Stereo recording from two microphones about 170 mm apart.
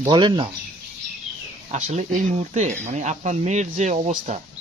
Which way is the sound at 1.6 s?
45° right (ahead or behind).